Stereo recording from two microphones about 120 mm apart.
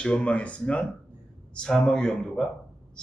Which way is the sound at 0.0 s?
10° left (ahead or behind).